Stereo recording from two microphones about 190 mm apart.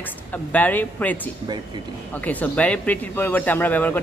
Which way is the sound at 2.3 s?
10° left (ahead or behind).